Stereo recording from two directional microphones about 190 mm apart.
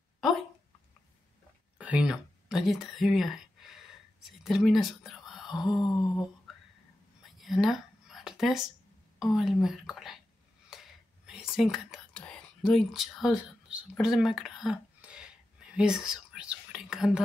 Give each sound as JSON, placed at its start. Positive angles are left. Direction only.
{"t": 1.8, "sound": "speech", "side_deg": -5}
{"t": 5.8, "sound": "a sound", "side_deg": 20}
{"t": 7.2, "sound": "whispering", "side_deg": 0}
{"t": 9.2, "sound": "a woman's voice", "side_deg": 0}
{"t": 10.7, "sound": "whispering", "side_deg": -5}
{"t": 13.9, "sound": "a sound", "side_deg": 0}